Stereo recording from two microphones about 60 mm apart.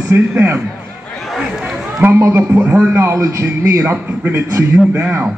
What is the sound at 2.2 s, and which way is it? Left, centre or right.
Speech, right.